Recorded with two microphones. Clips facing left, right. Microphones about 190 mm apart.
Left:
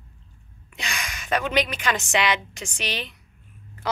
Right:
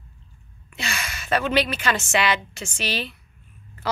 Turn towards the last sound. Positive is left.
turn(degrees=15)  # may be behind; listen again after turning